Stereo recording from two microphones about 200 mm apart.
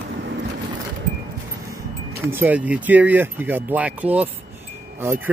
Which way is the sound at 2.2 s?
10° right (ahead or behind).